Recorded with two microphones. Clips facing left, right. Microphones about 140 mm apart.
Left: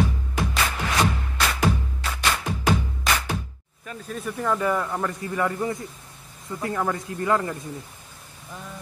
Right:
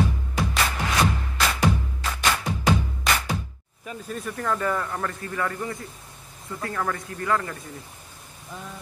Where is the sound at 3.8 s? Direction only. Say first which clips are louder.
Right 1 dB; 10° right (ahead or behind).